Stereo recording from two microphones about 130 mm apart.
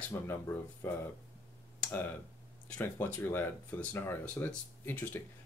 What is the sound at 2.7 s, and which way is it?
Speech, 15° left (ahead or behind).